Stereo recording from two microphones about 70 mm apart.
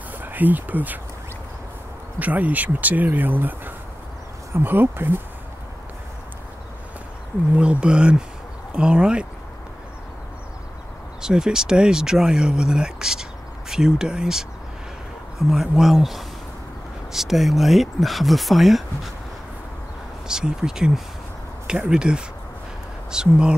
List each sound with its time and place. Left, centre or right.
0.2 s speech: right
2.1 s speech: right
7.5 s speech: centre
11.1 s speech: centre
15.5 s speech: centre
20.2 s speech: centre